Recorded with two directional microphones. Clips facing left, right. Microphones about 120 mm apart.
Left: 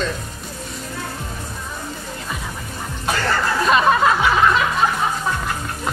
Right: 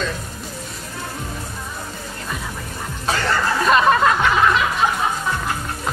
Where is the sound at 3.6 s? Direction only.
Centre (ahead or behind).